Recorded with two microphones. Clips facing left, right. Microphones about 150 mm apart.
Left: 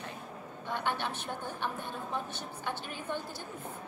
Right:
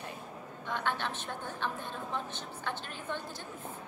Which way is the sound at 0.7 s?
15° left (ahead or behind).